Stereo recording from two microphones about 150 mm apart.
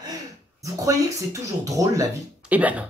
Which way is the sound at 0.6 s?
20° right (ahead or behind).